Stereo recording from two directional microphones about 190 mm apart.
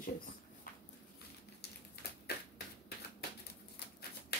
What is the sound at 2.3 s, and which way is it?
Finger snapping, 55° left (ahead or behind).